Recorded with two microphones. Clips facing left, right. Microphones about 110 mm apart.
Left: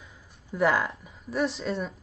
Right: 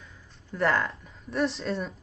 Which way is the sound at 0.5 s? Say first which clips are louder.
Left 1 dB; 5° left (ahead or behind).